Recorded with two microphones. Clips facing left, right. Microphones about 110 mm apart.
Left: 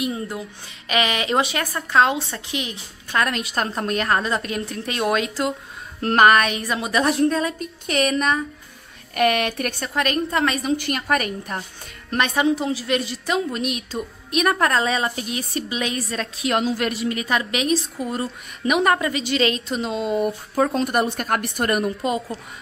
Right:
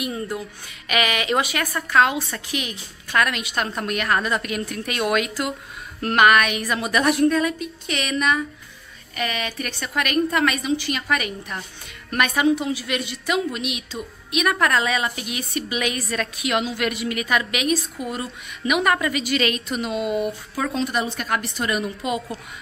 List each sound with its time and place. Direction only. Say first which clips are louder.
0.0 s a woman's voice: left 1 dB; 25° left (ahead or behind)
9.1 s a woman's voice: left 8 dB; 55° left (ahead or behind)
9.9 s a woman's voice: right 1 dB; 30° left (ahead or behind)
10.8 s a woman's voice: left 2 dB; 50° left (ahead or behind)
12.1 s a woman's voice: even; 30° left (ahead or behind)
20.5 s a woman's voice: left 6 dB; 45° left (ahead or behind)
20.8 s a woman's voice: left 3 dB; 55° left (ahead or behind)